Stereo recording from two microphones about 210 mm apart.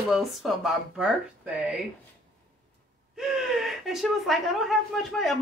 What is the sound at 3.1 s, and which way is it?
Speech, centre (ahead or behind).